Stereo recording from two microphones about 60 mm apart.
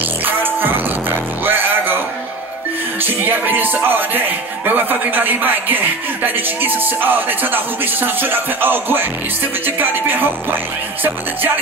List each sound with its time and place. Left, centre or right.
0.2 s music: right
3.0 s music: right
4.6 s speech: right